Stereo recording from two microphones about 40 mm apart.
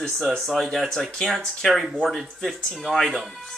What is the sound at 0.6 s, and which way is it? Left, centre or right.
A man's voice, centre.